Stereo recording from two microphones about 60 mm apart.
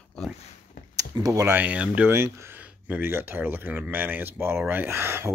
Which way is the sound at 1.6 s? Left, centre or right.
Right.